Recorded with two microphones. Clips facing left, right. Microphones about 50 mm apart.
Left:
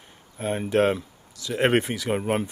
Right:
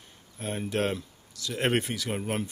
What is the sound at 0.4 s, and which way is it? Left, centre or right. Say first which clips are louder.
Speech: left 7 dB; centre.